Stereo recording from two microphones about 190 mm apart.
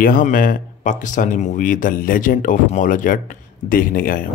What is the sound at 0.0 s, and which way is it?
Speech, 45° left (ahead or behind).